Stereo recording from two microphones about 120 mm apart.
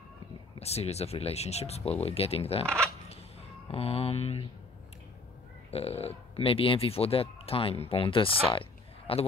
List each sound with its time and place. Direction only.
0.6 s speech: 60° left (ahead or behind)
3.7 s speech: 55° left (ahead or behind)
5.7 s speech: 60° left (ahead or behind)